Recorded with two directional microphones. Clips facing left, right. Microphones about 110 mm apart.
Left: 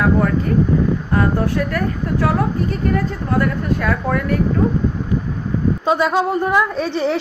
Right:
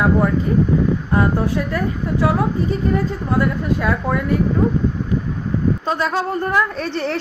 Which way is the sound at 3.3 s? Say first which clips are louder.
Even; 15° right (ahead or behind).